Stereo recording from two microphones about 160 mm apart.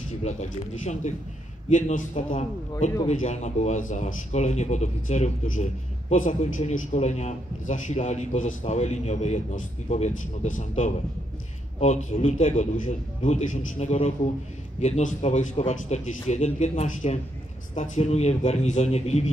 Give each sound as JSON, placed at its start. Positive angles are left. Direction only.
{"t": 0.2, "sound": "a man's voice", "side_deg": 45}